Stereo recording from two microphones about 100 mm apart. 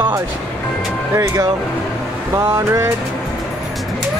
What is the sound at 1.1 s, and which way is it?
Speech, 35° right (ahead or behind).